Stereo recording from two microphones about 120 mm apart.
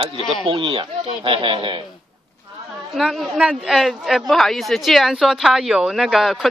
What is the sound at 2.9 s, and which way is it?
A woman's voice, centre (ahead or behind).